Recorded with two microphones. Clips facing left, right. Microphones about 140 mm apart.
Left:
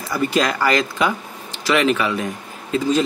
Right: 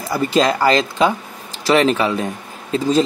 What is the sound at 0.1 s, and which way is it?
Speech, 30° right (ahead or behind).